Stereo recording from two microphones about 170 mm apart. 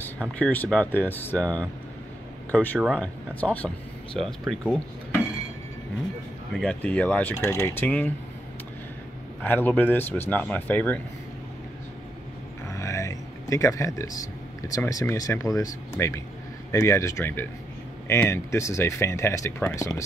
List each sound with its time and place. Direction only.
0.0 s speech: 10° left (ahead or behind)
6.6 s speech: 10° left (ahead or behind)
9.4 s speech: 10° left (ahead or behind)
12.6 s a sound: 20° left (ahead or behind)
14.8 s speech: 15° left (ahead or behind)